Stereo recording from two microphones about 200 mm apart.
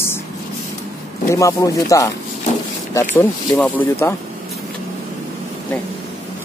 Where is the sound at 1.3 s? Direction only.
15° left (ahead or behind).